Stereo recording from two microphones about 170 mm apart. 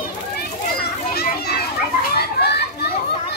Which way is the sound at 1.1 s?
65° left (ahead or behind).